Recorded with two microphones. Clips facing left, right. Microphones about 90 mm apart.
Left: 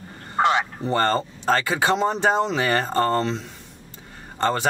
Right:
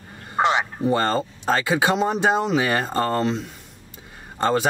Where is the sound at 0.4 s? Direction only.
20° right (ahead or behind).